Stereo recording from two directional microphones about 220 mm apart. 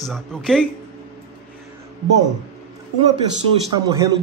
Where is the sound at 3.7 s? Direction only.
20° right (ahead or behind).